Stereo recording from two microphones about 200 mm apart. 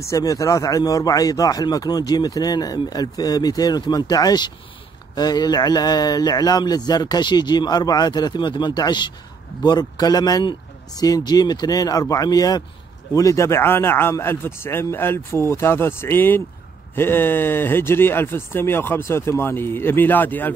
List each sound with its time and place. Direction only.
0.0 s speech: 15° left (ahead or behind)